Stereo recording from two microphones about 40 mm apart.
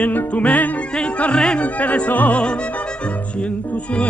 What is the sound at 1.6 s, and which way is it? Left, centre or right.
Music, left.